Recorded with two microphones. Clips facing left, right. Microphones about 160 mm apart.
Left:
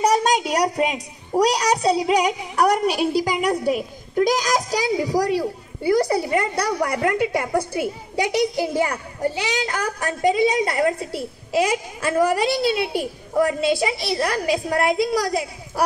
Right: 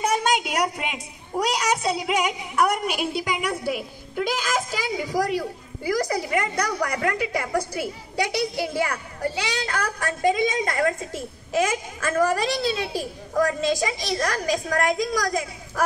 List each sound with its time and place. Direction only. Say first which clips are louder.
0.0 s a woman's voice: left 4 dB; 35° left (ahead or behind)
9.2 s speech: left 4 dB; 15° left (ahead or behind)
10.2 s a woman's voice: left 4 dB; 35° left (ahead or behind)
11.5 s a woman's voice: left 3 dB; 15° left (ahead or behind)